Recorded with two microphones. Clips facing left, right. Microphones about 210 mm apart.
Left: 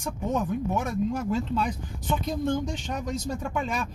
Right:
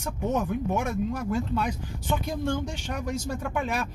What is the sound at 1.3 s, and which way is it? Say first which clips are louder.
Speech: left 1 dB; 50° right (ahead or behind).